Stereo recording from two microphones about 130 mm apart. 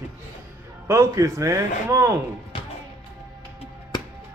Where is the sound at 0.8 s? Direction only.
20° right (ahead or behind).